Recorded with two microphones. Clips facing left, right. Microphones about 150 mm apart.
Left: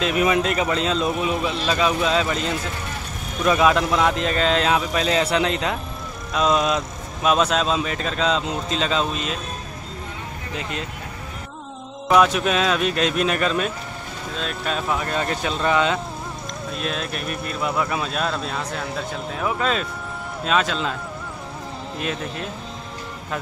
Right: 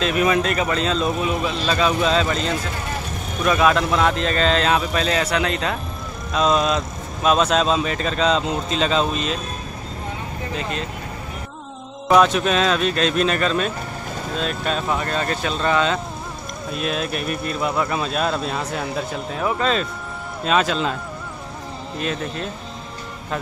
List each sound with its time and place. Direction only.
0.0 s speech: 15° left (ahead or behind)
12.2 s speech: 10° left (ahead or behind)
14.4 s speech: centre (ahead or behind)
15.0 s speech: 15° left (ahead or behind)
16.7 s speech: 5° right (ahead or behind)
22.0 s speech: centre (ahead or behind)